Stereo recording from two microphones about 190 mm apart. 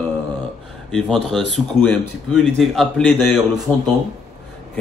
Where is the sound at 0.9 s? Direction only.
5° left (ahead or behind).